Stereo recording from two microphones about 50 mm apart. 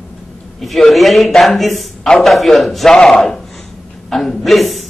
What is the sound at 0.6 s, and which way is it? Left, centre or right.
Speech, centre.